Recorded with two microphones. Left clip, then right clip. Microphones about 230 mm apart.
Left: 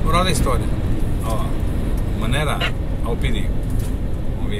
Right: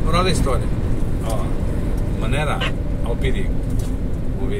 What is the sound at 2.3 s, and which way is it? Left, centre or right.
Speech, left.